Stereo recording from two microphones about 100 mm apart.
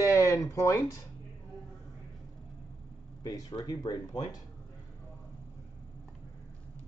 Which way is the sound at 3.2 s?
40° left (ahead or behind).